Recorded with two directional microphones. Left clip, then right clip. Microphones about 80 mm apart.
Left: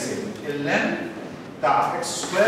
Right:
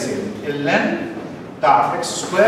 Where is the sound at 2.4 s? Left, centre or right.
Centre.